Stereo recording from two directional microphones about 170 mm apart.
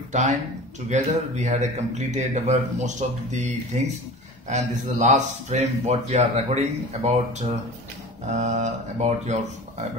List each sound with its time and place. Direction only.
0.1 s speech: 45° right (ahead or behind)